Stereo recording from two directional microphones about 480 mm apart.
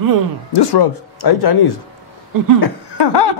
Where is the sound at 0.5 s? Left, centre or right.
Left.